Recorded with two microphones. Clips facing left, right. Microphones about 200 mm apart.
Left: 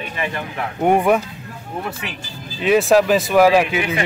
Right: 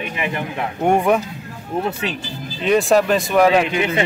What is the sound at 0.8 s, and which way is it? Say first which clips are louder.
Speech: left 1 dB; 5° left (ahead or behind).